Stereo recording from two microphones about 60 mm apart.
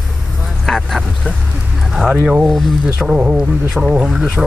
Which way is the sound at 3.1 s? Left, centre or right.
Centre.